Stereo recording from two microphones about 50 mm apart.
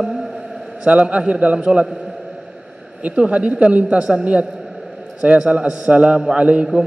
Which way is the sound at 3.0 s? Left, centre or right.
Right.